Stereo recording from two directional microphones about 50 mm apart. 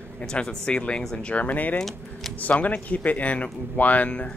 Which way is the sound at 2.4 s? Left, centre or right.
Left.